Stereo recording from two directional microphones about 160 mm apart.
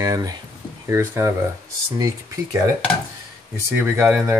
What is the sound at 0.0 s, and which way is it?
Speech, 25° right (ahead or behind).